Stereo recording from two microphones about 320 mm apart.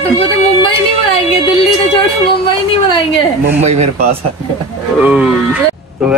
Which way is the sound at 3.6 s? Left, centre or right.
Right.